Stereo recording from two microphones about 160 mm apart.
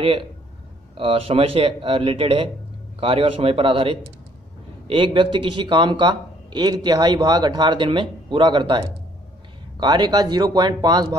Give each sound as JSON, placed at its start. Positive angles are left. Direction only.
{"t": 0.0, "sound": "speech", "side_deg": -35}